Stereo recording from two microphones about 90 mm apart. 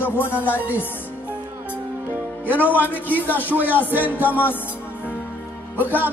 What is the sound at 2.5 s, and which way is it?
Speech, 20° right (ahead or behind).